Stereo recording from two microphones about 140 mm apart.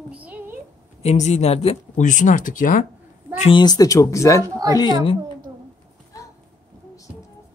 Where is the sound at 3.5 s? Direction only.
30° left (ahead or behind).